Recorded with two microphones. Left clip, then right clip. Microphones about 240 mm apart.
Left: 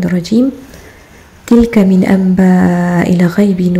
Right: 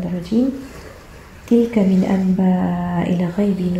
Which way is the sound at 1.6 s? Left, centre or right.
Left.